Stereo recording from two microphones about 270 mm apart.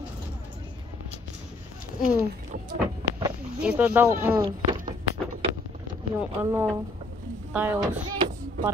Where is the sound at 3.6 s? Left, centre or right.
Centre.